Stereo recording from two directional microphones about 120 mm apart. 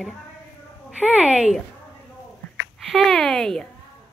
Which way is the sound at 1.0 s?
10° right (ahead or behind).